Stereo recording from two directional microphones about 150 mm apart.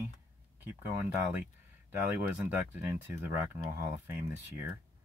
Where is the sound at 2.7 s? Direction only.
15° right (ahead or behind).